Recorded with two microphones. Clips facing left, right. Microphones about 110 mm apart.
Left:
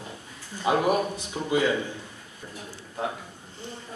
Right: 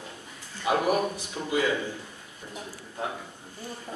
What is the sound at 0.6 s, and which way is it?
Speech, 25° left (ahead or behind).